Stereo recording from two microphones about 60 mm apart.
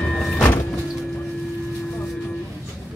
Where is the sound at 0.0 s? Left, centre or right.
Centre.